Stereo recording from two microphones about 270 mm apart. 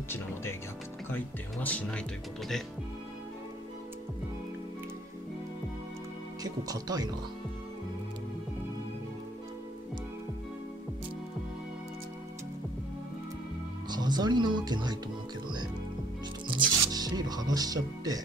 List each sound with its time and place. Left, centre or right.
0.1 s speech: centre
6.4 s speech: centre
13.8 s speech: centre
16.4 s speech: centre